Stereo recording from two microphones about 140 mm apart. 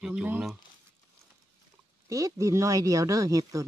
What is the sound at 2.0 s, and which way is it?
Speech, 25° right (ahead or behind).